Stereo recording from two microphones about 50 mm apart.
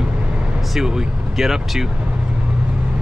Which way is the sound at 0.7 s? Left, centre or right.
Centre.